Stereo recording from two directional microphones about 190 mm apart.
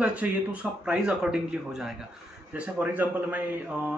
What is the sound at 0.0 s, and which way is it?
A man's voice, 5° right (ahead or behind).